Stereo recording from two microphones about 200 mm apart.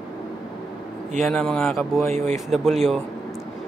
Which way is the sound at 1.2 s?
5° left (ahead or behind).